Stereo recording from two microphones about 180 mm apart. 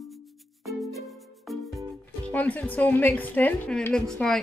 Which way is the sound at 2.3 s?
10° left (ahead or behind).